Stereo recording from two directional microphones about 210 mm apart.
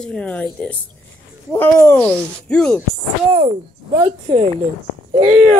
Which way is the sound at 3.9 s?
35° right (ahead or behind).